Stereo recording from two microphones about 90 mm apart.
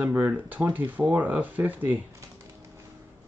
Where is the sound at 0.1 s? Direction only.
20° right (ahead or behind).